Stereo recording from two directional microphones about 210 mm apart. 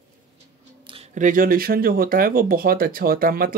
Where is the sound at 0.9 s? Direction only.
35° right (ahead or behind).